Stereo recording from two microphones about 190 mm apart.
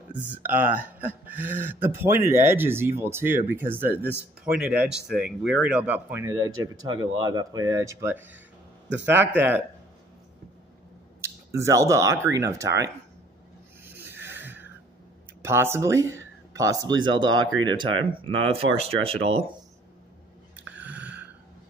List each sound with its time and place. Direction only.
0.3 s speech: 10° right (ahead or behind)
11.1 s speech: 15° right (ahead or behind)
13.8 s wheeze: 10° right (ahead or behind)
15.4 s speech: 15° right (ahead or behind); by 19.4 s 30° right (ahead or behind)
20.5 s a sound: 10° right (ahead or behind)